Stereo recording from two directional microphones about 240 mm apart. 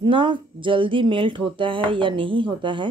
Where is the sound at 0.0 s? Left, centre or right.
Centre.